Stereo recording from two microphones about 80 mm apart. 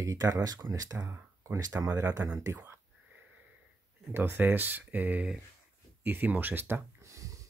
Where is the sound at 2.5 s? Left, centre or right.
Right.